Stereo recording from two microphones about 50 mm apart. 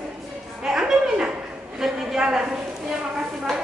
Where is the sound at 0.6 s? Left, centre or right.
Centre.